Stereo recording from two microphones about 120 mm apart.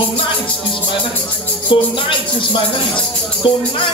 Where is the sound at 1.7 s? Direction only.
45° left (ahead or behind).